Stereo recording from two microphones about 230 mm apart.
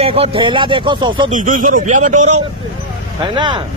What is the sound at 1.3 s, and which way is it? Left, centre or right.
A man's voice, right.